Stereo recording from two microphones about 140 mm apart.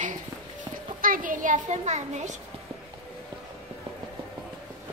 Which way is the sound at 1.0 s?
80° right.